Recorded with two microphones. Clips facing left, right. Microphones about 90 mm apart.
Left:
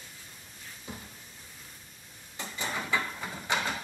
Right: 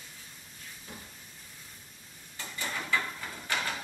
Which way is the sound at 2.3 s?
20° left (ahead or behind).